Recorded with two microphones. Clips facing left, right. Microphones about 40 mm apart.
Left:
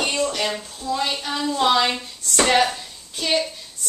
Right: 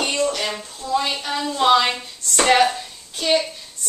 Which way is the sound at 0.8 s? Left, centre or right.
Centre.